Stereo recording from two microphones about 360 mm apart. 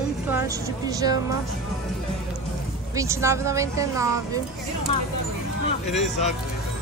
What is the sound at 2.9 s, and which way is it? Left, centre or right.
Speech, centre.